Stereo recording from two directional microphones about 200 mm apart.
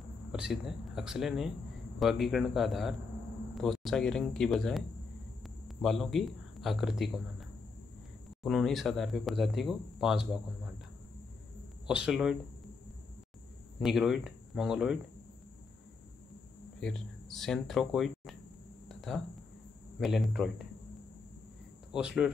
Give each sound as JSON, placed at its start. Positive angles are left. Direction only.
{"t": 0.3, "sound": "speech", "side_deg": -5}
{"t": 8.5, "sound": "speech", "side_deg": 0}
{"t": 11.9, "sound": "speech", "side_deg": -5}
{"t": 13.7, "sound": "speech", "side_deg": -5}
{"t": 16.8, "sound": "speech", "side_deg": 0}
{"t": 18.9, "sound": "a sound", "side_deg": 0}
{"t": 20.0, "sound": "speech", "side_deg": 0}
{"t": 21.9, "sound": "speech", "side_deg": -5}